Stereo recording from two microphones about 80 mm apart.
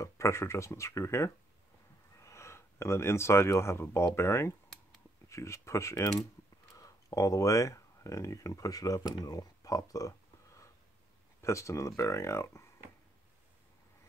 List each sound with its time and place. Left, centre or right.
0.0 s speech: left